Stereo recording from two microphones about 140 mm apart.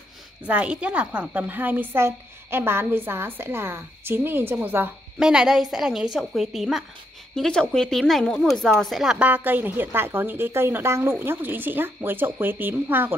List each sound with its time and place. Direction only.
0.5 s a woman's voice: 10° right (ahead or behind)